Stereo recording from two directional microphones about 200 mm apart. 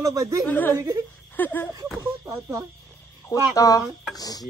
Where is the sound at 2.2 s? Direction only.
15° right (ahead or behind).